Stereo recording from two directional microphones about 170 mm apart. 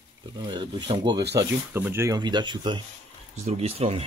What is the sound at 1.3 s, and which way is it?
Speech, 15° right (ahead or behind).